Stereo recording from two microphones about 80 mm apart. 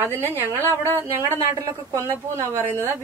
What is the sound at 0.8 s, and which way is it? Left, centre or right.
Speech, right.